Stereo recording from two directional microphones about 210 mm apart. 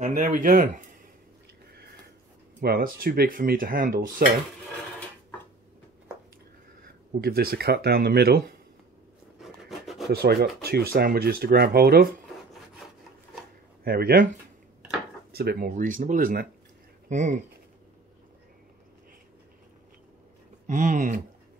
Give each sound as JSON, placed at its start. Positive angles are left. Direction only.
{"t": 0.0, "sound": "speech", "side_deg": -40}
{"t": 2.6, "sound": "speech", "side_deg": -45}
{"t": 6.8, "sound": "speech", "side_deg": -45}
{"t": 9.4, "sound": "rub", "side_deg": 0}
{"t": 10.1, "sound": "speech", "side_deg": -50}
{"t": 13.8, "sound": "speech", "side_deg": -45}
{"t": 15.3, "sound": "speech", "side_deg": -45}
{"t": 20.6, "sound": "speech", "side_deg": -35}